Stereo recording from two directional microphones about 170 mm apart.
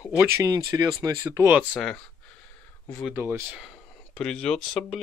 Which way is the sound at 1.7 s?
5° left (ahead or behind).